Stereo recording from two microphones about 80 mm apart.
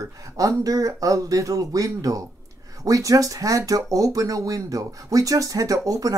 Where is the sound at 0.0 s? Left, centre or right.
Right.